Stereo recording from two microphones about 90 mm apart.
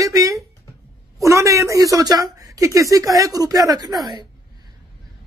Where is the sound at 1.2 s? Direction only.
35° right (ahead or behind).